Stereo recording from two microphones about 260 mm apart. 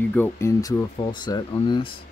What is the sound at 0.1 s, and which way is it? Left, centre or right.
Speech, centre.